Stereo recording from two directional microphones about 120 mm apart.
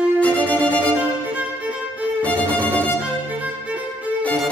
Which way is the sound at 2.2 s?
10° left (ahead or behind).